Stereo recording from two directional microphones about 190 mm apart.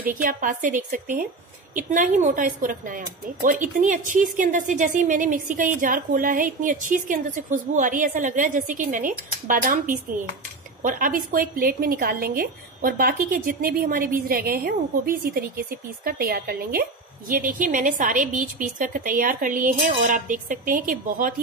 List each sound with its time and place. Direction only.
0.1 s a woman's voice: 45° right (ahead or behind)